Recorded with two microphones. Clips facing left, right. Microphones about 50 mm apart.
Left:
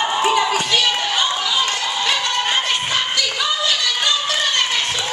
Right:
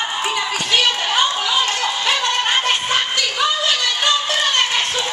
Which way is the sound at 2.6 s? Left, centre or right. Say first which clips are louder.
Right 2 dB; right.